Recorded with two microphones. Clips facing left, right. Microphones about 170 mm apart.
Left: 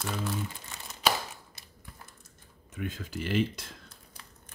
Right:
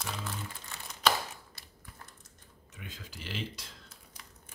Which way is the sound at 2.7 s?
55° left (ahead or behind).